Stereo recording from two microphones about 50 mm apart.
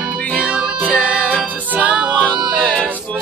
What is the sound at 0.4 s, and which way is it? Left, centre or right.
Music, right.